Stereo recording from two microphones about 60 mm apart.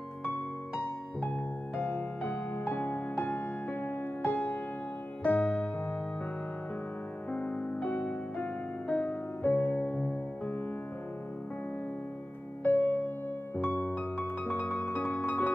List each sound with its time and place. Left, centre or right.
1.2 s music: left
7.2 s music: left
8.4 s music: left
12.6 s music: left